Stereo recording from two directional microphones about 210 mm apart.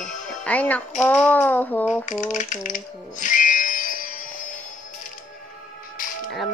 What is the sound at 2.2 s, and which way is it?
Music, 35° left (ahead or behind).